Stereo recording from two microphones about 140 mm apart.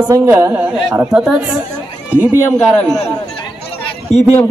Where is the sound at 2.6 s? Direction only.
5° left (ahead or behind).